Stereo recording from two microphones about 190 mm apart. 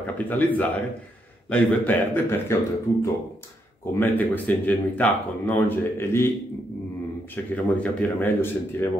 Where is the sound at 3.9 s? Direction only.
10° left (ahead or behind).